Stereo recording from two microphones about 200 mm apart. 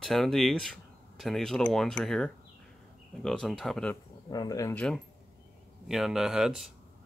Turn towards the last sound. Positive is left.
turn(degrees=0)  # may be behind; listen again after turning